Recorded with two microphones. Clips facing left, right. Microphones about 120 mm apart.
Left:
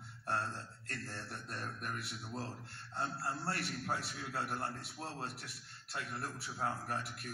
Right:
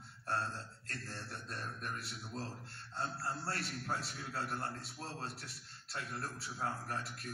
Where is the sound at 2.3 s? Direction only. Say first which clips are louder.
Left 1 dB; 20° left (ahead or behind).